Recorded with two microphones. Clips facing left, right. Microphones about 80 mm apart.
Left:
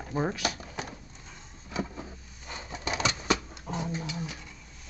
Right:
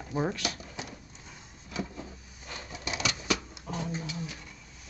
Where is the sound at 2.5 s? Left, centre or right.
Left.